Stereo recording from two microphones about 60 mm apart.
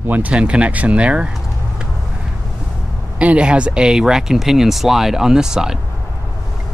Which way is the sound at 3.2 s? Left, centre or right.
Centre.